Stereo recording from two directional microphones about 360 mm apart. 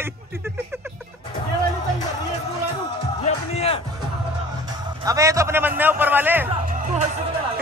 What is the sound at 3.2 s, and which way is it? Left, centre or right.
Speech, centre.